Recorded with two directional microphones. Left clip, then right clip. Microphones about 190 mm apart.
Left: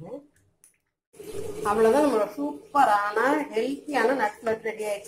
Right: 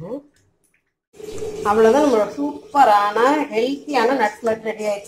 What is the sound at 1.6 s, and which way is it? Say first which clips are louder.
Speech: right 6 dB; centre (ahead or behind).